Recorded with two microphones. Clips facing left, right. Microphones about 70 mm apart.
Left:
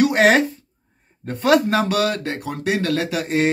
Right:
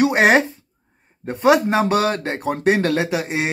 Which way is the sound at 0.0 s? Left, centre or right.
Right.